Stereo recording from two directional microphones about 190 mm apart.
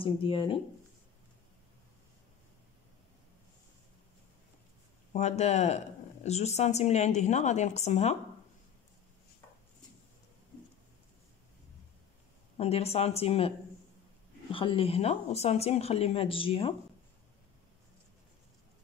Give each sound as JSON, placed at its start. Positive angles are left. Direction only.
{"t": 0.0, "sound": "speech", "side_deg": 30}
{"t": 5.1, "sound": "a woman's voice", "side_deg": 35}
{"t": 12.5, "sound": "a woman's voice", "side_deg": 30}
{"t": 14.5, "sound": "a woman's voice", "side_deg": 25}